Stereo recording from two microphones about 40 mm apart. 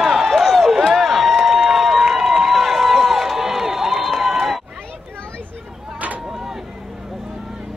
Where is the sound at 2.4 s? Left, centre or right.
Centre.